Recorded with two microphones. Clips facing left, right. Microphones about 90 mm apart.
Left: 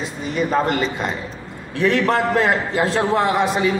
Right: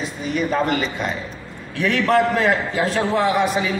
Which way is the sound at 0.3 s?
25° left (ahead or behind).